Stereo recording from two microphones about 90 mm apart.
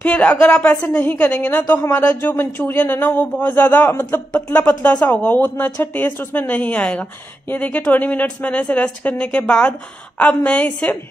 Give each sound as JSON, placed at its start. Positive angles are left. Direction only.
{"t": 0.0, "sound": "speech", "side_deg": 15}